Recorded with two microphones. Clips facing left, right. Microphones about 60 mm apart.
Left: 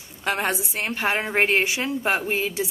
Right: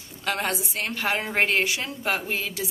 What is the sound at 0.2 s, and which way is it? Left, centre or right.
A woman's voice, left.